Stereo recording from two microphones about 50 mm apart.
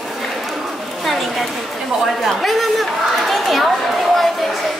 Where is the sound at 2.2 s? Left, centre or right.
Centre.